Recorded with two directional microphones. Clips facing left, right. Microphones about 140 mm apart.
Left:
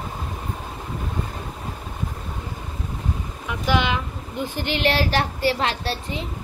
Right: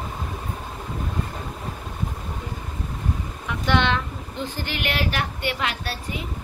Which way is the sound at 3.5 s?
5° left (ahead or behind).